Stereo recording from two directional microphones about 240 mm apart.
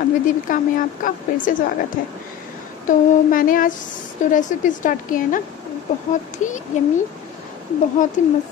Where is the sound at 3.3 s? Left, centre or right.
Left.